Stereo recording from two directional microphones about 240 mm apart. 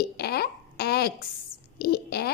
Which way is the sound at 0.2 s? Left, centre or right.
Left.